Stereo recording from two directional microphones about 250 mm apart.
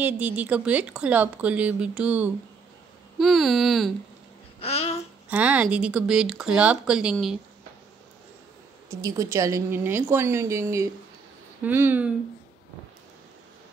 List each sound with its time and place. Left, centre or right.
0.0 s speech: centre
4.6 s babbling: left
5.3 s speech: centre
9.0 s a woman's voice: centre